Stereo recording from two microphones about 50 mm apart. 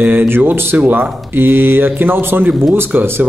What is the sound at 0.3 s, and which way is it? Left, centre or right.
Speech, right.